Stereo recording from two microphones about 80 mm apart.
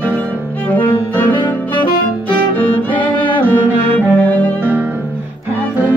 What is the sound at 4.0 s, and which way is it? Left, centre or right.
Music, centre.